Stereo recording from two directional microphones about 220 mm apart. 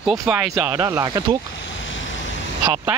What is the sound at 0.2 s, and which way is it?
Speech, 10° right (ahead or behind).